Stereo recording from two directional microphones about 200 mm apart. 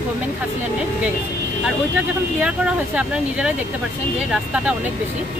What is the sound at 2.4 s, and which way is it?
Speech, 5° right (ahead or behind).